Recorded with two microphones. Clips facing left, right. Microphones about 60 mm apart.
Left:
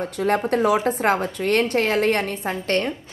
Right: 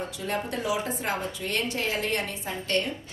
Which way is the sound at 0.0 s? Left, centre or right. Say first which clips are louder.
Left 9 dB; left.